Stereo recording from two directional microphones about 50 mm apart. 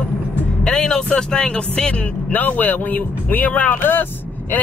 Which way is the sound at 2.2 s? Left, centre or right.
Left.